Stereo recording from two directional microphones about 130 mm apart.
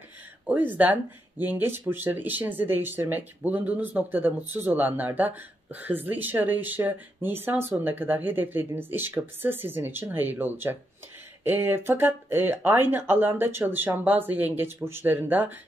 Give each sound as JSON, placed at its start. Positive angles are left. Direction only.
{"t": 0.5, "sound": "speech", "side_deg": -15}